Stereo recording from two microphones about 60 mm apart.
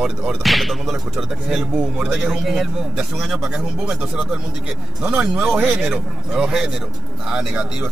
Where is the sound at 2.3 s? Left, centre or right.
Centre.